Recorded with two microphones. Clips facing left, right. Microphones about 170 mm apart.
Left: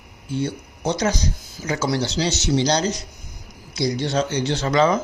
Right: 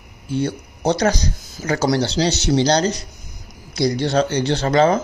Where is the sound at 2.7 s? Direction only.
65° right (ahead or behind).